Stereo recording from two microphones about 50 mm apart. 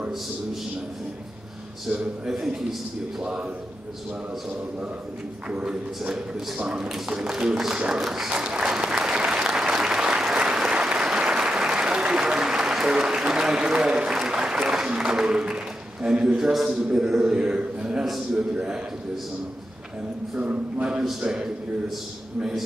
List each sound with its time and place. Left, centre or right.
1.9 s speech: centre
5.5 s speech: centre
8.3 s applause: centre
16.6 s speech: centre
20.3 s speech: right
21.2 s speech: centre